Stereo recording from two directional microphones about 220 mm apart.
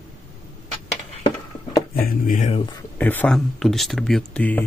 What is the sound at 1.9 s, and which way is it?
Speech, 40° left (ahead or behind).